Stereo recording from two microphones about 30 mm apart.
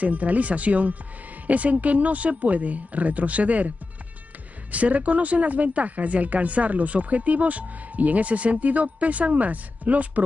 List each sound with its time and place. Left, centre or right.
0.0 s speech: right